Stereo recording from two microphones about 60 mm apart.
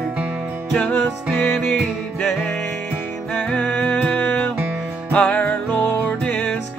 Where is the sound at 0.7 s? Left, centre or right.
Centre.